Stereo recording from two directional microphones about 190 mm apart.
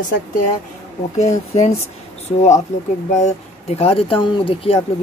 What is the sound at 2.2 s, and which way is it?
Speech, 35° left (ahead or behind).